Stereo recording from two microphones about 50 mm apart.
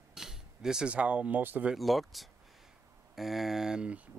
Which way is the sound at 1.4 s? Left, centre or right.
Right.